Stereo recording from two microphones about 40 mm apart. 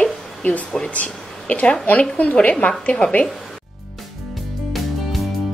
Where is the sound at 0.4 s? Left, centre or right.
Left.